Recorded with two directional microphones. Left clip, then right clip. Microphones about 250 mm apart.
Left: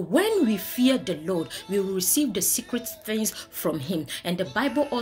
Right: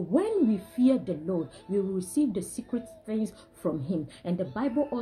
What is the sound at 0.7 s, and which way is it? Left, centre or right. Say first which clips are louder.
A woman's voice: left 2 dB; centre.